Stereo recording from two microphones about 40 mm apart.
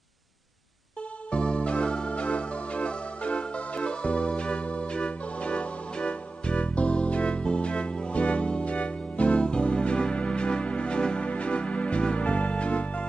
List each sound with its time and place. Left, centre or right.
1.3 s music: left